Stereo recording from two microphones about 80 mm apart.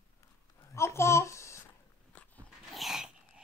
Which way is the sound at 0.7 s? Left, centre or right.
Left.